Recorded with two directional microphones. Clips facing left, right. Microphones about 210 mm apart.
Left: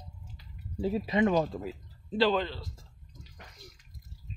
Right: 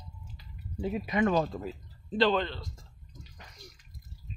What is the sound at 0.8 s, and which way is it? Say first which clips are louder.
Speech: left 2 dB; 30° left (ahead or behind).